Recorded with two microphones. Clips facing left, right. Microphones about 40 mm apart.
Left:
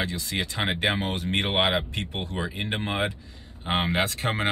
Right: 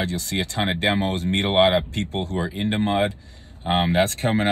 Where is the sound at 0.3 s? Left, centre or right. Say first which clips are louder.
Right 4 dB; left.